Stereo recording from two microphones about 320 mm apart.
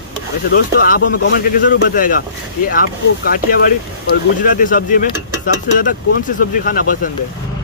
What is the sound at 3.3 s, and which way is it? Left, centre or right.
Speech, left.